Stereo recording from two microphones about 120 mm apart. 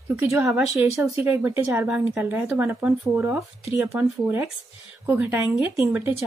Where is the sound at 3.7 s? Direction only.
5° right (ahead or behind).